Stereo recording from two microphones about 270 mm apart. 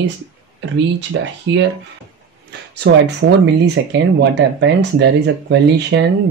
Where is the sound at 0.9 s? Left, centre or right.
Right.